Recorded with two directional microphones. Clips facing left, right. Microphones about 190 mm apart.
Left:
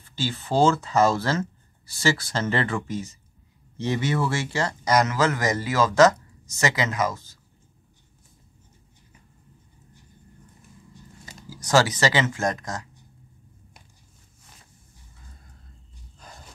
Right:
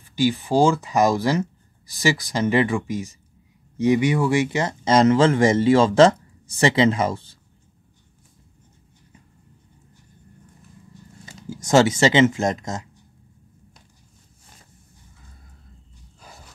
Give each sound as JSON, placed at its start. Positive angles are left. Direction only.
{"t": 0.0, "sound": "speech", "side_deg": -15}
{"t": 11.2, "sound": "speech", "side_deg": -25}
{"t": 16.2, "sound": "dog", "side_deg": -5}